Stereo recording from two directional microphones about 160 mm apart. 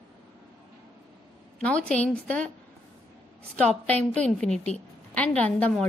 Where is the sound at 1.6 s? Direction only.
10° left (ahead or behind).